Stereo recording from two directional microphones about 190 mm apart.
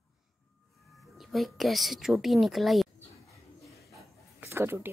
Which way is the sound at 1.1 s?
Centre (ahead or behind).